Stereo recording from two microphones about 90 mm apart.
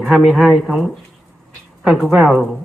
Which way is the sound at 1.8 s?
Centre (ahead or behind).